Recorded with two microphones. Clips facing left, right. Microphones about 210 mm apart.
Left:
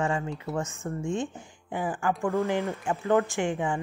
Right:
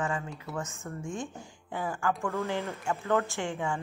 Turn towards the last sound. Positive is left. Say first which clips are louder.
# left 5 dB
turn(degrees=15)  # may be behind; listen again after turning